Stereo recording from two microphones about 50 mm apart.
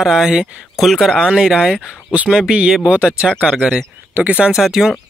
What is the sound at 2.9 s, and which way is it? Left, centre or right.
Speech, right.